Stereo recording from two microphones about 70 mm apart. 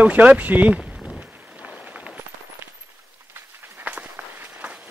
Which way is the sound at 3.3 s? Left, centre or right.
Right.